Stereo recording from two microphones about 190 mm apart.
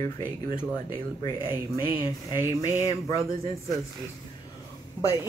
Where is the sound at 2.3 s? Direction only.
15° left (ahead or behind).